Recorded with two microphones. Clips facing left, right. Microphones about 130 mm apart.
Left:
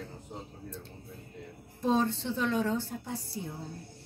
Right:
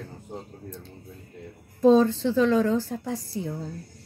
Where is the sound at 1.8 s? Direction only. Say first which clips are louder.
Right 10 dB; 90° right.